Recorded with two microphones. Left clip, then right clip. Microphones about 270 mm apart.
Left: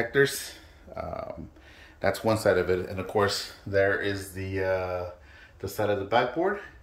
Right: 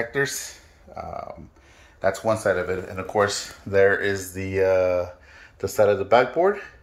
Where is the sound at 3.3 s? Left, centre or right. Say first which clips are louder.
Right 4 dB; centre.